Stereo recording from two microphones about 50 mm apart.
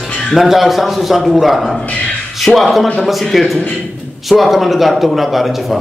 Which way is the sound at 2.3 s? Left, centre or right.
Centre.